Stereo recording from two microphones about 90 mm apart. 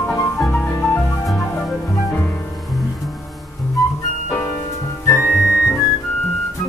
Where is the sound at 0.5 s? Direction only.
15° left (ahead or behind).